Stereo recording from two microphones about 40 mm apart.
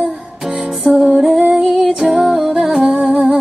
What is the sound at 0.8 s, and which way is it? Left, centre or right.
Music, centre.